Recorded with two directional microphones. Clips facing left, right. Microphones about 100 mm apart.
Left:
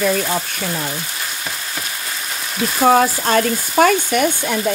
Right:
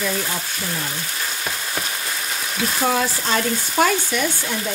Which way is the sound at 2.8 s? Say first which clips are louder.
Left 9 dB; 45° left (ahead or behind).